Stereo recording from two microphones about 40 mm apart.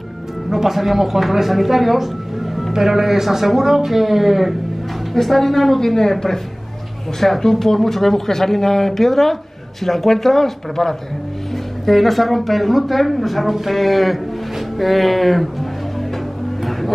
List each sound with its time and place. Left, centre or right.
0.5 s speech: centre